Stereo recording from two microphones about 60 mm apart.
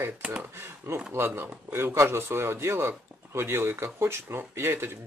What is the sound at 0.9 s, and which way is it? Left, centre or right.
Speech, right.